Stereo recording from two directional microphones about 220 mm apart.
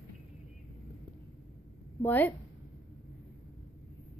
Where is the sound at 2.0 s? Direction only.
10° left (ahead or behind).